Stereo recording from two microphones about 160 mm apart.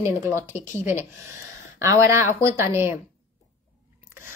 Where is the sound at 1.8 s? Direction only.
20° right (ahead or behind).